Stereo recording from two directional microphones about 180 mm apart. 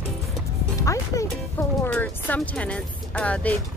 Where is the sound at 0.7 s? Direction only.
20° left (ahead or behind).